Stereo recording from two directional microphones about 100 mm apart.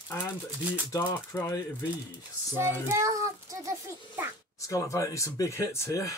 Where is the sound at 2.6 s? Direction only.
25° right (ahead or behind).